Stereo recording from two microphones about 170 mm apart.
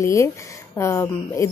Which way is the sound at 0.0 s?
15° left (ahead or behind).